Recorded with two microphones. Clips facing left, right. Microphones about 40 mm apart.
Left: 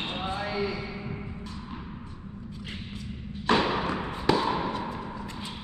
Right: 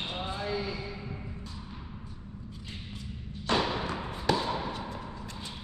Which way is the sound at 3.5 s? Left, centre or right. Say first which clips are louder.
Left 4 dB; left.